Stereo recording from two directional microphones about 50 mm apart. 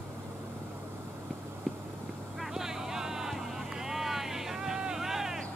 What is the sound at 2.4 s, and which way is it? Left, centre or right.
Vehicle, centre.